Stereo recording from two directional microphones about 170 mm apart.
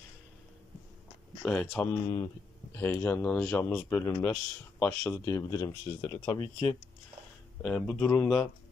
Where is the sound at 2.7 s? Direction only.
15° left (ahead or behind).